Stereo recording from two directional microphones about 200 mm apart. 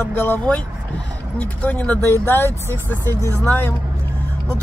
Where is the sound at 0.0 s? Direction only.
10° left (ahead or behind).